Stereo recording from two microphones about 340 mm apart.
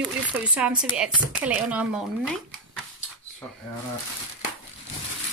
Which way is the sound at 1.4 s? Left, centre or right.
Centre.